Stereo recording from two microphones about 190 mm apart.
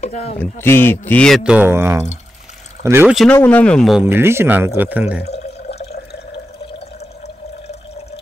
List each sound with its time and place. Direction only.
0.0 s speech: 35° left (ahead or behind)
0.4 s speech: 10° left (ahead or behind); by 3.2 s 10° right (ahead or behind)
3.4 s speech: 5° left (ahead or behind)
4.0 s speech: 15° right (ahead or behind)
5.2 s water: 35° left (ahead or behind)